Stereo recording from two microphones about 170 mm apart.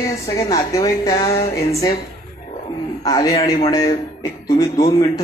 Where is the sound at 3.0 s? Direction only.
20° left (ahead or behind).